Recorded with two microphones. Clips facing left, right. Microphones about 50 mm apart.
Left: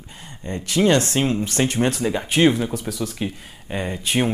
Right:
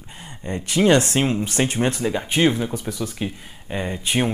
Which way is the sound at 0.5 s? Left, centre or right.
Centre.